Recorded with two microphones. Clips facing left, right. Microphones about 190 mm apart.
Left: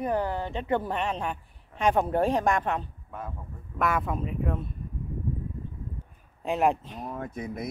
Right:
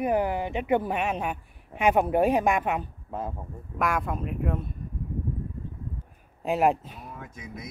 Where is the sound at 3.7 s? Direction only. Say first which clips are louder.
Even; centre (ahead or behind).